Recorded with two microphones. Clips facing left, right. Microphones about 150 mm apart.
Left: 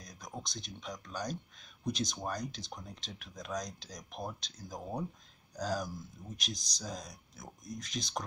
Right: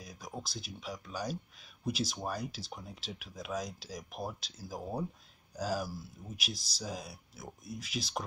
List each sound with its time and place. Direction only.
0.0 s speech: 5° right (ahead or behind)